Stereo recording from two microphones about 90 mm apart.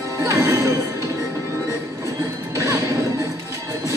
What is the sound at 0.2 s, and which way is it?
Music, 35° right (ahead or behind).